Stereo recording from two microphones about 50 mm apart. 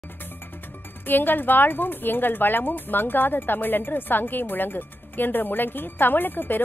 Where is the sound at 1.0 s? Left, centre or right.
Left.